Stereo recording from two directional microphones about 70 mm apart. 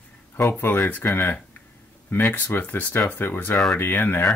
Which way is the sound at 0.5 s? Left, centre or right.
Left.